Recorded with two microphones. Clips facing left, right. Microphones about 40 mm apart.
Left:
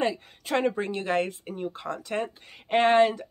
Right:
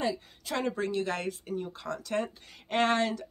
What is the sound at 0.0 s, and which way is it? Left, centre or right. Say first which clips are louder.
Speech: left 4 dB; left.